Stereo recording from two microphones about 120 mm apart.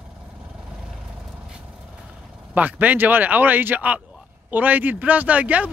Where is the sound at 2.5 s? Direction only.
15° right (ahead or behind).